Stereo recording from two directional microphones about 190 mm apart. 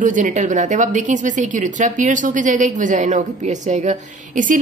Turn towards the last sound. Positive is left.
turn(degrees=-45)  # may be behind; listen again after turning